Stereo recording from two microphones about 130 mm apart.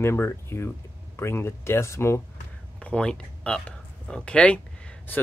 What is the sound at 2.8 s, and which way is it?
Speech, 10° left (ahead or behind).